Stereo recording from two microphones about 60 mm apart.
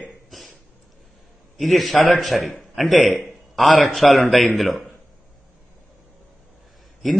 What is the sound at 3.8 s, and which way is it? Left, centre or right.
A man's voice, centre.